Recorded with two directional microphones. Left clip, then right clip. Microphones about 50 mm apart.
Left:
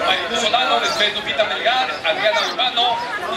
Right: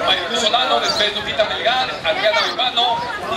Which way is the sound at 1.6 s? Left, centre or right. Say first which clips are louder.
Even; centre.